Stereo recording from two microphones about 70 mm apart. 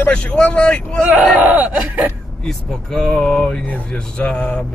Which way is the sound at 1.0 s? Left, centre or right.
Right.